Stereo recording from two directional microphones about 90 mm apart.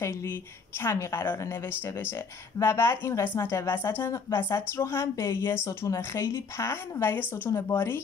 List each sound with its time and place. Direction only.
0.0 s speech: 30° left (ahead or behind)